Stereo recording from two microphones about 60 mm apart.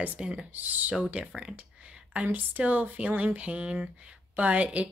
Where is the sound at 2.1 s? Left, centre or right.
Right.